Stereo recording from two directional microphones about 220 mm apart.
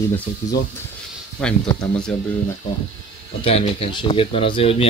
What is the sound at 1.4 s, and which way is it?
Speech, 5° left (ahead or behind).